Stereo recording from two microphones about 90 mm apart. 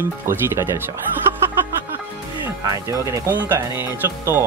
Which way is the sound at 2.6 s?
35° right (ahead or behind).